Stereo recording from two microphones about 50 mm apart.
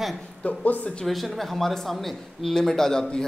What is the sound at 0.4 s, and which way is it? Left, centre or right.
Speech, left.